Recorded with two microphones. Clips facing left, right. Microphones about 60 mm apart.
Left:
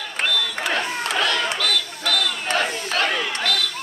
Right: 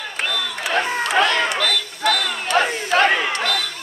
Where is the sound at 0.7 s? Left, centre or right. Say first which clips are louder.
Right 8 dB; right.